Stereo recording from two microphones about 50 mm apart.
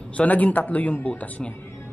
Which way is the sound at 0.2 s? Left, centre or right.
Left.